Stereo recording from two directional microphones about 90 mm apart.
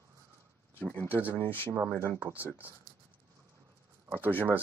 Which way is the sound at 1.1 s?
20° right (ahead or behind).